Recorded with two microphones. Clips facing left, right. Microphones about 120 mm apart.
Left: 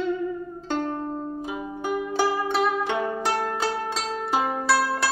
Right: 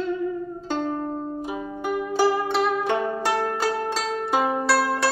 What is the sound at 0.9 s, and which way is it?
Music, 5° right (ahead or behind).